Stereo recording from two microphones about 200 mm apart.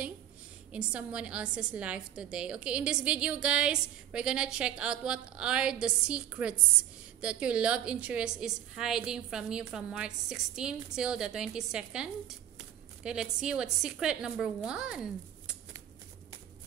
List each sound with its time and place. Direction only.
0.7 s a woman's voice: 5° right (ahead or behind)